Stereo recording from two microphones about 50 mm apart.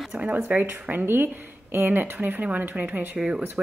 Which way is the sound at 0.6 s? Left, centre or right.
Right.